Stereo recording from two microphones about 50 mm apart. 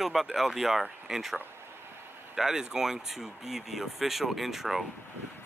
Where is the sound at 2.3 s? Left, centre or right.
Centre.